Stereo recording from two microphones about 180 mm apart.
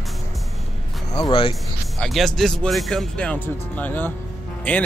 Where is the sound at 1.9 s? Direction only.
Centre (ahead or behind).